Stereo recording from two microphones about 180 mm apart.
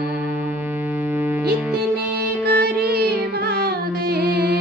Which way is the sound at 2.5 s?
60° right (ahead or behind).